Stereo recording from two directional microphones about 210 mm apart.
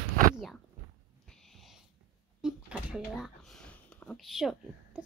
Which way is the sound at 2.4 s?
Centre (ahead or behind).